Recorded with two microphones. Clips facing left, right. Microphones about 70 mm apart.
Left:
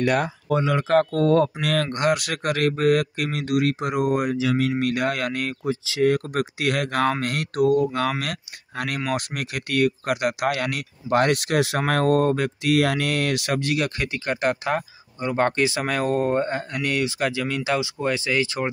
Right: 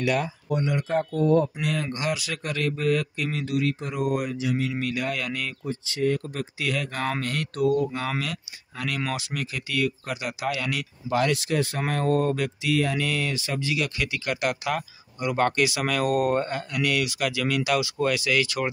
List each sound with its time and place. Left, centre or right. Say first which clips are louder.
0.0 s speech: left 3 dB; left
0.8 s speech: left 4 dB; left
1.9 s speech: left 6 dB; left
4.1 s speech: left 4 dB; left
5.7 s speech: left 5 dB; left
12.3 s speech: left 4 dB; left
12.7 s speech: left 4 dB; left
16.7 s speech: right 2 dB; left